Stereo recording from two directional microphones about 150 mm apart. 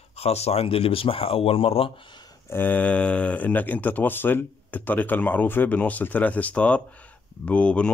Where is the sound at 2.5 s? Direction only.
10° left (ahead or behind).